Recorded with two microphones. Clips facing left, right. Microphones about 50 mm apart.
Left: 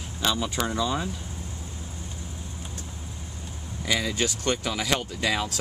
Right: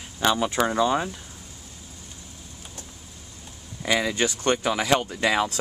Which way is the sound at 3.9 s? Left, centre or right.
Right.